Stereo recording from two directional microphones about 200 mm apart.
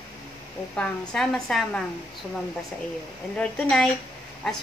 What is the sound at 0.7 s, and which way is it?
A woman's voice, 5° left (ahead or behind).